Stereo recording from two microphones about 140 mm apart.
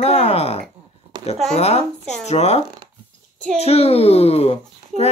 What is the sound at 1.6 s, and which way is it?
A child's voice, 50° left (ahead or behind).